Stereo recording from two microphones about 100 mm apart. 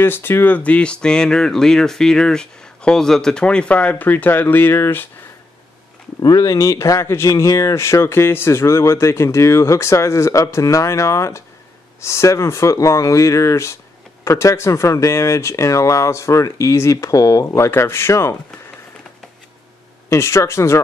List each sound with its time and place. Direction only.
0.0 s speech: 20° left (ahead or behind)
6.2 s speech: 40° left (ahead or behind)
20.1 s speech: 30° left (ahead or behind)